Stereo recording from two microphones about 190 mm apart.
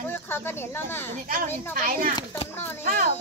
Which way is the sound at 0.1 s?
10° left (ahead or behind).